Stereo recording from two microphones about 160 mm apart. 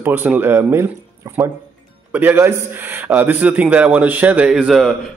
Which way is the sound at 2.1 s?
10° right (ahead or behind).